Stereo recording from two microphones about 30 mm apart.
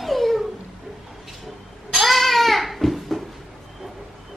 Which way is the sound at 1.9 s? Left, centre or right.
Centre.